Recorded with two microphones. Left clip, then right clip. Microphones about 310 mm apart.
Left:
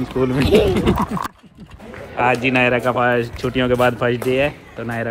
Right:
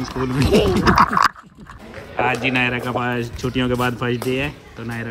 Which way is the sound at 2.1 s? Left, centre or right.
Centre.